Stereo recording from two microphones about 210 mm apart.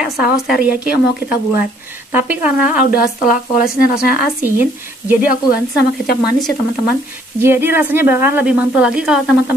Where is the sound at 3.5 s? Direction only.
45° left (ahead or behind).